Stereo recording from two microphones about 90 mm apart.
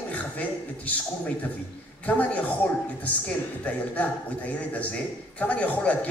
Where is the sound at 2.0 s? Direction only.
15° left (ahead or behind).